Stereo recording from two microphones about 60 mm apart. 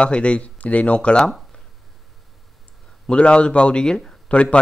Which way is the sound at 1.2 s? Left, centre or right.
Centre.